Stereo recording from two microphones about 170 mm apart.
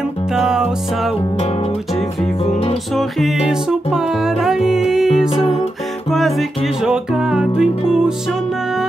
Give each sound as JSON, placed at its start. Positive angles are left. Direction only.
{"t": 0.3, "sound": "music", "side_deg": -5}
{"t": 2.5, "sound": "music", "side_deg": 35}
{"t": 2.9, "sound": "music", "side_deg": 0}
{"t": 5.3, "sound": "music", "side_deg": 35}
{"t": 6.0, "sound": "music", "side_deg": 0}